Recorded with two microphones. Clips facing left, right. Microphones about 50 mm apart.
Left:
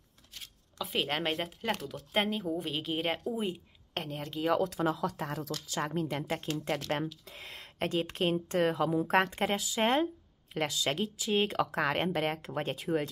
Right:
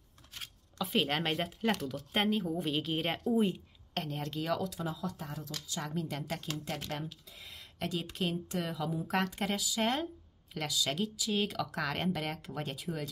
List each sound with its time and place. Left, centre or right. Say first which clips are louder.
0.7 s speech: right 1 dB; centre
3.5 s speech: even; centre
4.6 s speech: left 7 dB; left
5.8 s speech: left 5 dB; left
7.2 s a sound: left 5 dB; left
7.8 s speech: left 5 dB; left